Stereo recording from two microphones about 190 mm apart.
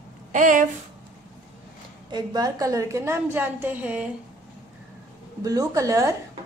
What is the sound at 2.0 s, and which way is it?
A woman's voice, 20° right (ahead or behind).